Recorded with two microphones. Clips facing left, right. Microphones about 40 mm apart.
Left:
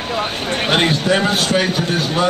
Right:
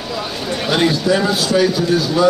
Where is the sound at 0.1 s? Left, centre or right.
Left.